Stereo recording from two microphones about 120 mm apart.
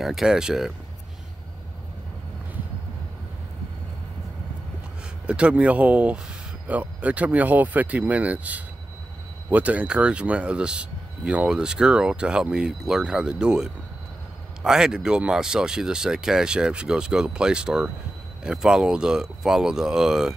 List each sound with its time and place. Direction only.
0.0 s speech: 5° right (ahead or behind)
5.2 s speech: 10° right (ahead or behind)